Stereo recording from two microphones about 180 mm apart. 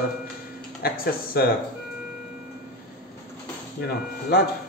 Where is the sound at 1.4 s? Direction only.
60° left (ahead or behind).